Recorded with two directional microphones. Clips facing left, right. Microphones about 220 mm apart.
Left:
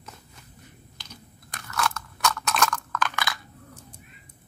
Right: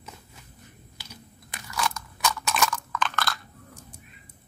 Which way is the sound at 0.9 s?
5° right (ahead or behind).